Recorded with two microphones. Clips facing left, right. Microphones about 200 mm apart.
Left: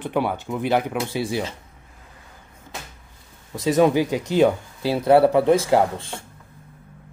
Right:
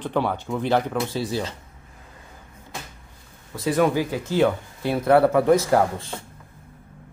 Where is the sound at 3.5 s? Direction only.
20° left (ahead or behind).